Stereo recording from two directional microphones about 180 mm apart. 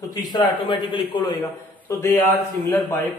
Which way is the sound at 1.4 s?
15° left (ahead or behind).